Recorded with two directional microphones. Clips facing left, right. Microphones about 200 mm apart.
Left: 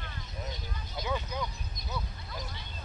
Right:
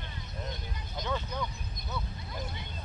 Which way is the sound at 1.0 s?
10° left (ahead or behind).